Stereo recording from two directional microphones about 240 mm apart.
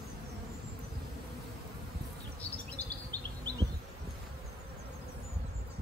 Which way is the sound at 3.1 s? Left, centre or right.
Centre.